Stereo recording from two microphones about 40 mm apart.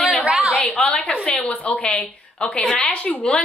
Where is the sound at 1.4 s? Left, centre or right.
Left.